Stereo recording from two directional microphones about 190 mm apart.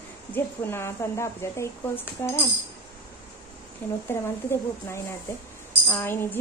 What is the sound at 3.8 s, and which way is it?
Speech, 10° left (ahead or behind).